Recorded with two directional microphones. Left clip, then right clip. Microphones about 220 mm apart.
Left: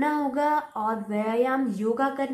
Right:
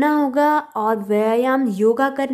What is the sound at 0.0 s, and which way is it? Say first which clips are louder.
Speech: right 8 dB; 45° right (ahead or behind).